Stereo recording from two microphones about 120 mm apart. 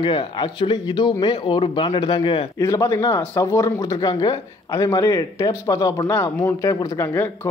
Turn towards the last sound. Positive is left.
turn(degrees=30)  # may be behind; listen again after turning